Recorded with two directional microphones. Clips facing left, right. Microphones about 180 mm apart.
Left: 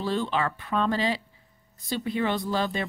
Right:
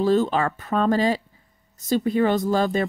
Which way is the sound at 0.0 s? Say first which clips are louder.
Right 7 dB; 45° right (ahead or behind).